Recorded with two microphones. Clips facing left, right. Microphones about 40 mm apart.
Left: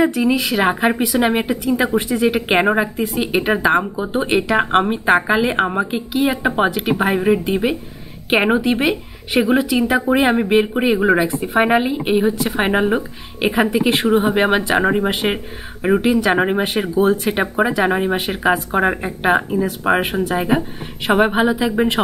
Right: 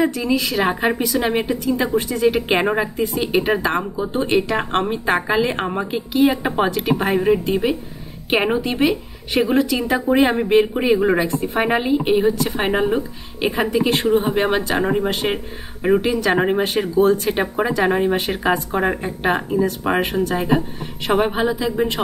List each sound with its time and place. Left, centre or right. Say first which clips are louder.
0.0 s speech: left 3 dB; left; by 6.6 s centre
6.6 s speech: left 1 dB; centre